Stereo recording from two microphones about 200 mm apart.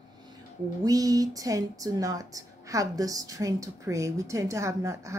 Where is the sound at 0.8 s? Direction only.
20° right (ahead or behind).